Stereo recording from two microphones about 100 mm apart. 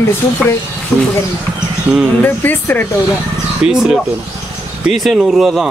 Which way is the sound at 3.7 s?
5° right (ahead or behind).